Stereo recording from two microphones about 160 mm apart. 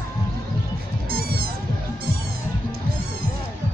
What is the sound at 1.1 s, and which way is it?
Music, 70° right (ahead or behind).